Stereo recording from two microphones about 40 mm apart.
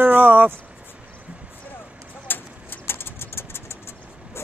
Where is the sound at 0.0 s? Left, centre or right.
Right.